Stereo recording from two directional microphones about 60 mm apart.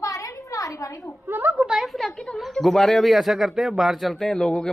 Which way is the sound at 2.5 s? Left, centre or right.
Centre.